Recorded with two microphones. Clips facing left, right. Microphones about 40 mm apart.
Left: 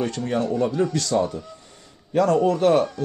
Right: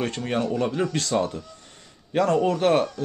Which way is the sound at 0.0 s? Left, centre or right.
Right.